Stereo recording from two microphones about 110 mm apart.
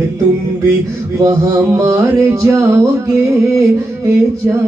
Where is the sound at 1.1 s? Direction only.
25° right (ahead or behind).